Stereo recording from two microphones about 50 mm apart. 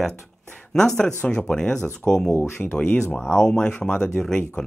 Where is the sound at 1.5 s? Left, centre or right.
Centre.